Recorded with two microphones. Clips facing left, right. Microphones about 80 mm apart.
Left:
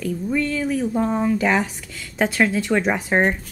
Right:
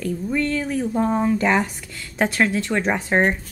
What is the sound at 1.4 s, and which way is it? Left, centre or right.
Speech, centre.